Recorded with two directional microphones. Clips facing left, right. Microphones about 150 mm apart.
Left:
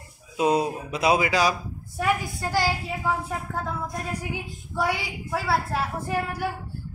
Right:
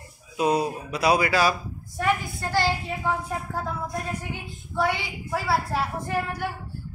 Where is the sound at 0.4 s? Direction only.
25° left (ahead or behind); by 3.2 s 5° left (ahead or behind).